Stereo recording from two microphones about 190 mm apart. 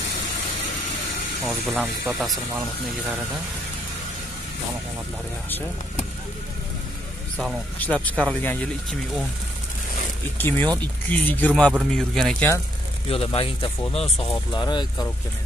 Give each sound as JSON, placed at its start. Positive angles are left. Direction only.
{"t": 1.4, "sound": "speech", "side_deg": 0}
{"t": 7.3, "sound": "speech", "side_deg": 5}
{"t": 10.3, "sound": "speech", "side_deg": 10}
{"t": 13.1, "sound": "speech", "side_deg": 30}